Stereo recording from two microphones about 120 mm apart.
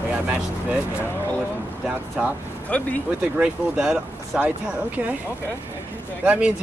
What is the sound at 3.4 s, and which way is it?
Speech, 10° right (ahead or behind).